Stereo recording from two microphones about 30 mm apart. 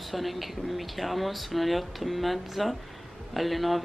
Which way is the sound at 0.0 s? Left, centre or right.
Centre.